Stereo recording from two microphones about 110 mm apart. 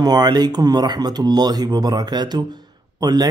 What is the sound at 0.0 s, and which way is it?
Speech, 40° right (ahead or behind).